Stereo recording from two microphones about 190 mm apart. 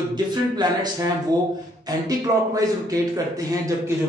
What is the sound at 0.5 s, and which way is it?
A man's voice, 20° right (ahead or behind).